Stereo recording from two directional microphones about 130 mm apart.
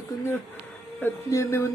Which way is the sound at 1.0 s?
20° left (ahead or behind).